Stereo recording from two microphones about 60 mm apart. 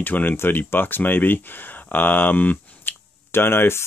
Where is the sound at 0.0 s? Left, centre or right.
Left.